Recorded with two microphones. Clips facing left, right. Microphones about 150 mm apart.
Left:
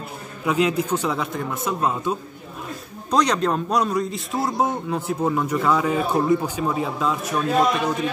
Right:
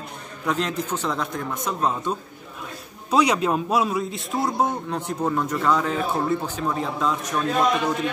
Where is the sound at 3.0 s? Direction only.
5° right (ahead or behind).